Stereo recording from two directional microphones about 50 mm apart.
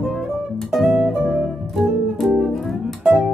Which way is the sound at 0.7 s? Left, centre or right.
Centre.